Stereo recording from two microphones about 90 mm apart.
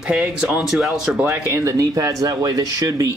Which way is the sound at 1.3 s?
35° right (ahead or behind).